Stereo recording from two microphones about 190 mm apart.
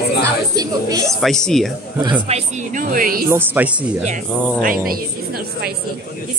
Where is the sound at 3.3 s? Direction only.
10° right (ahead or behind).